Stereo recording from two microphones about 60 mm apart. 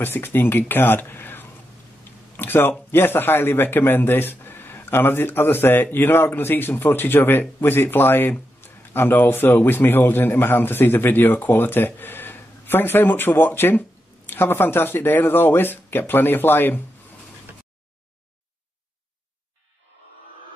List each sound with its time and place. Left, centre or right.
0.0 s a man's voice: left
2.3 s a sound: left
2.9 s a man's voice: left